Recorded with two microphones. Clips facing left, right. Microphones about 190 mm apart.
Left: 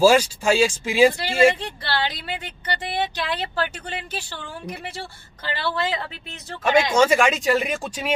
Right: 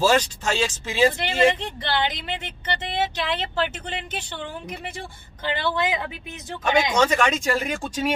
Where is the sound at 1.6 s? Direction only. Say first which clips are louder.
Right 1 dB; 20° right (ahead or behind).